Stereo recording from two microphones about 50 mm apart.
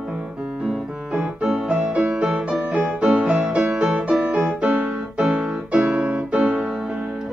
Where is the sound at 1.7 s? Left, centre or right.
Right.